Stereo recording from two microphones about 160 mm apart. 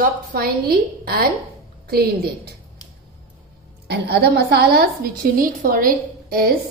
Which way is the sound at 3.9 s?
90° right.